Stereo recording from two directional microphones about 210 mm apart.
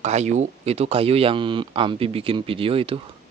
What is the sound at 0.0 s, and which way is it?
Speech, 35° right (ahead or behind).